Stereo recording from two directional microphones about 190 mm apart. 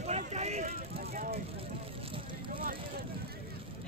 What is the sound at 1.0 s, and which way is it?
Vehicle, 55° right (ahead or behind).